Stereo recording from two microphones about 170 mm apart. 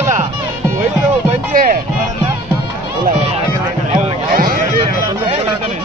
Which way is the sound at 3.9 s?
55° right (ahead or behind).